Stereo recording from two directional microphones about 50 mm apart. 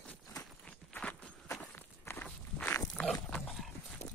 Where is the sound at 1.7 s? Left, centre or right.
Left.